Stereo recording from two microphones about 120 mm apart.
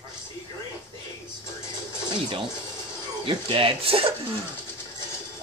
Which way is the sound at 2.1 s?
45° right (ahead or behind).